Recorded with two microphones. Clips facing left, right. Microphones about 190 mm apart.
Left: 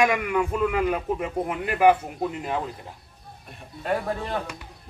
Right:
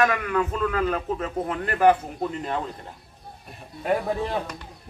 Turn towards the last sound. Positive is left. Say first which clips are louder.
# right 2 dB
turn(degrees=-15)  # may be behind; listen again after turning